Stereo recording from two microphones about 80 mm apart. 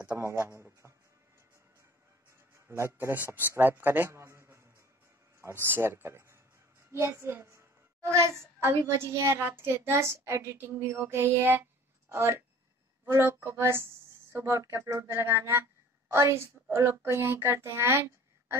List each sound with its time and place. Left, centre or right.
0.2 s a child's voice: right
2.5 s a man's voice: right